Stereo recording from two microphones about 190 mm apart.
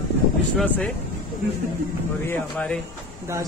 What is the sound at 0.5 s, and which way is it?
Speech, 5° left (ahead or behind).